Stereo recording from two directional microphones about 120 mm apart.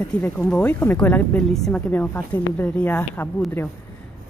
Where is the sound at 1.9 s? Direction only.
15° left (ahead or behind).